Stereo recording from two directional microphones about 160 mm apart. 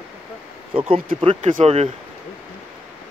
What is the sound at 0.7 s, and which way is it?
Speech, 35° right (ahead or behind).